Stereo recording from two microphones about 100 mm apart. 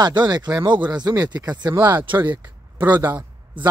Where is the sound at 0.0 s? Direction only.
45° right (ahead or behind).